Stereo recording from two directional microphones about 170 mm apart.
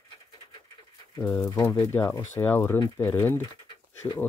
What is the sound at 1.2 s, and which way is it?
Speech, 10° left (ahead or behind).